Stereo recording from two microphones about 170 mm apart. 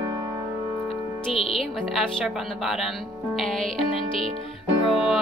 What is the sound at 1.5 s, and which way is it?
Speech, centre (ahead or behind).